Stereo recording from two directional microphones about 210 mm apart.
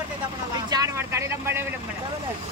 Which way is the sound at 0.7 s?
15° right (ahead or behind).